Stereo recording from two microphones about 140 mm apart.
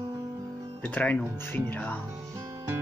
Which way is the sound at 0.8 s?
10° left (ahead or behind).